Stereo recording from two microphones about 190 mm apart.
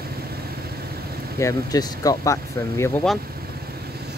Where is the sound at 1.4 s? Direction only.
15° left (ahead or behind).